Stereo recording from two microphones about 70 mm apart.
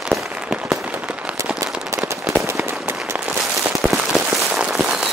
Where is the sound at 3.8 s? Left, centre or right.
Centre.